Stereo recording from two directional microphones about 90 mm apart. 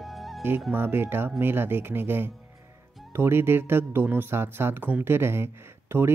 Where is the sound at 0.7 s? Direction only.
25° right (ahead or behind).